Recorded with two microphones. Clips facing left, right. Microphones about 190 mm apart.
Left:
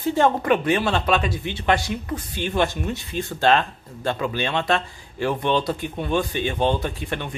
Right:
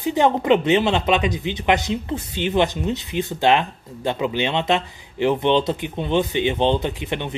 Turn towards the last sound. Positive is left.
turn(degrees=-20)  # may be behind; listen again after turning